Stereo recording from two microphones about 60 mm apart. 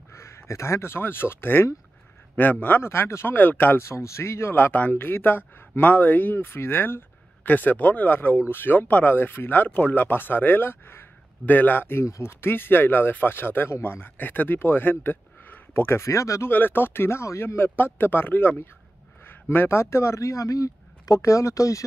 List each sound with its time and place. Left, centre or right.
0.1 s a man's voice: left
2.8 s speech: left
3.3 s a man's voice: left
3.8 s a man's voice: left
7.4 s a man's voice: left
11.4 s a man's voice: left
12.0 s speech: left
12.3 s a man's voice: left
16.4 s a man's voice: left
17.6 s a man's voice: left
19.2 s a sound: left
19.8 s speech: left
21.2 s speech: left